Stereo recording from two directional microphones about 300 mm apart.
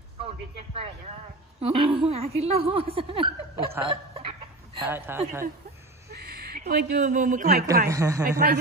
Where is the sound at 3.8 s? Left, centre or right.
Centre.